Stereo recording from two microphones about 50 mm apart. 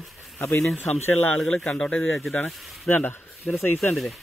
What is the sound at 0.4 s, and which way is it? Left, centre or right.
Speech, left.